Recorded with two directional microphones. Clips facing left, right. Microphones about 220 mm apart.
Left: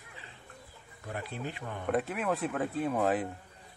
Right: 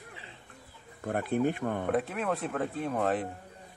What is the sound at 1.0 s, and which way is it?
Speech, 55° right (ahead or behind).